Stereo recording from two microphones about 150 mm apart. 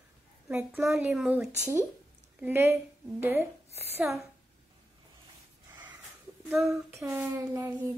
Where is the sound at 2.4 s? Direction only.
15° right (ahead or behind).